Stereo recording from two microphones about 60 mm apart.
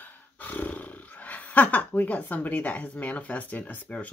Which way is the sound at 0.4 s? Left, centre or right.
Left.